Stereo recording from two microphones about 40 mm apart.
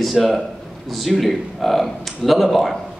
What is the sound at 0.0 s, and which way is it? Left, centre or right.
A man's voice, centre.